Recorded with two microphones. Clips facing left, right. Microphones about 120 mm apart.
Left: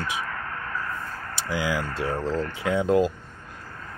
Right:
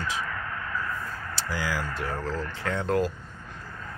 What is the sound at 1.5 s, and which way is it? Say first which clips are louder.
Speech: left 4 dB; 20° left (ahead or behind).